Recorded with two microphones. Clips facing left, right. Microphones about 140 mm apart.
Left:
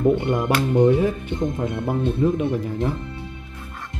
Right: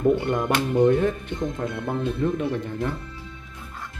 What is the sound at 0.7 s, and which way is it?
Speech, 10° left (ahead or behind).